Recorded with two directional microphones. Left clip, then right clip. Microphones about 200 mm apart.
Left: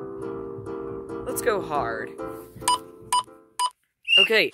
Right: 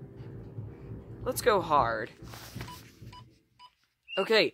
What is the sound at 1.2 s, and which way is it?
Speech, 5° left (ahead or behind).